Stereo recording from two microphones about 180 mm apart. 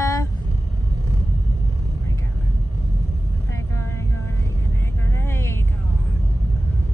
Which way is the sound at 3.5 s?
15° left (ahead or behind).